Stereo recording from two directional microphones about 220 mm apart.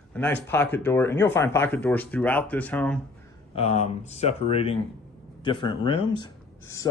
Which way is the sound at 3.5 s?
30° left (ahead or behind).